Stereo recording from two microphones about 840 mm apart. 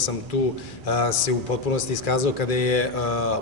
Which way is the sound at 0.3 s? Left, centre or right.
Left.